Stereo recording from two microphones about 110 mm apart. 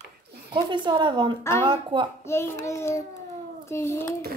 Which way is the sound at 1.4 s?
25° left (ahead or behind).